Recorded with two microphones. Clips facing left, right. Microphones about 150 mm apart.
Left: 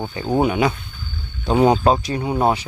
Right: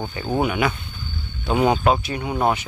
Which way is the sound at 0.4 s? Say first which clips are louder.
Left 3 dB; 30° left (ahead or behind).